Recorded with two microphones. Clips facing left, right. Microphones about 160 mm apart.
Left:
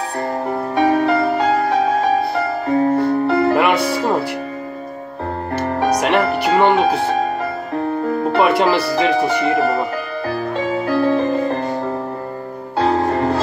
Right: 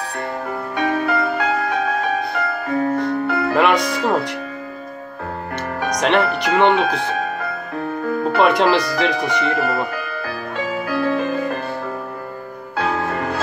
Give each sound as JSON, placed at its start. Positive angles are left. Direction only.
{"t": 0.5, "sound": "music", "side_deg": 30}
{"t": 3.5, "sound": "music", "side_deg": 5}
{"t": 3.8, "sound": "music", "side_deg": 30}
{"t": 5.9, "sound": "music", "side_deg": 10}
{"t": 6.3, "sound": "speech", "side_deg": 5}
{"t": 8.4, "sound": "speech", "side_deg": 5}
{"t": 10.2, "sound": "music", "side_deg": 30}
{"t": 12.7, "sound": "music", "side_deg": 30}